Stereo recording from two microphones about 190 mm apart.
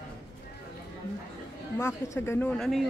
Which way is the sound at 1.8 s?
15° left (ahead or behind).